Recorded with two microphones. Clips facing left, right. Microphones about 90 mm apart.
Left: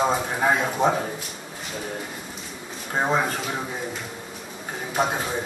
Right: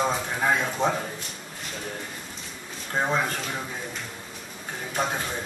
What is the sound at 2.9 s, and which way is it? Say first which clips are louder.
Speech: left 3 dB; 15° left (ahead or behind).